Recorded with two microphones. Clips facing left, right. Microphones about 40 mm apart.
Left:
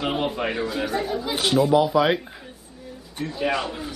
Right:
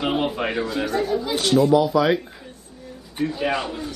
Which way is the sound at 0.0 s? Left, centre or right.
Centre.